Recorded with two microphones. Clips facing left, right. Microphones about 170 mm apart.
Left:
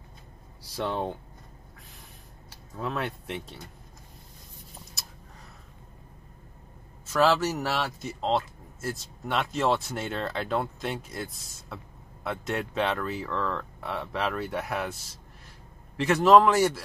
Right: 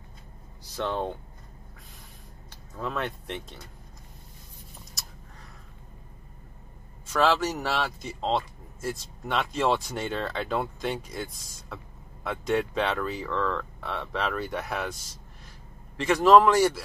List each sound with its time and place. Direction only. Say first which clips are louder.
0.7 s speech: even; 10° left (ahead or behind)
2.5 s speech: even; 5° left (ahead or behind)
7.1 s speech: left 1 dB; 5° left (ahead or behind)
16.0 s speech: even; 5° left (ahead or behind)